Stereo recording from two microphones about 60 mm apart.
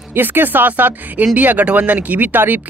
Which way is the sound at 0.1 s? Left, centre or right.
Right.